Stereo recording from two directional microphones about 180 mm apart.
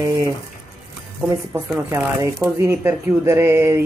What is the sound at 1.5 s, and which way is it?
Speech, 5° right (ahead or behind).